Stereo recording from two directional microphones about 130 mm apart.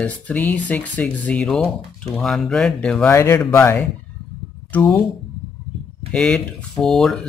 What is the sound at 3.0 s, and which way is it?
Speech, 20° left (ahead or behind).